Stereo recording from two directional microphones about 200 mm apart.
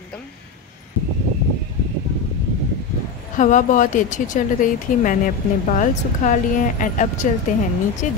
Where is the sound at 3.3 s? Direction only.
40° left (ahead or behind).